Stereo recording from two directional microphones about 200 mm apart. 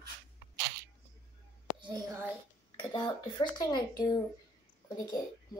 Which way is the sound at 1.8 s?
20° right (ahead or behind).